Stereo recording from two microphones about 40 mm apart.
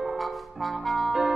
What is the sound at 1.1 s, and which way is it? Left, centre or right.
Music, centre.